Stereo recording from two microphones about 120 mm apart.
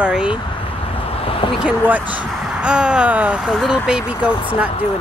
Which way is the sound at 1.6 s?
15° right (ahead or behind).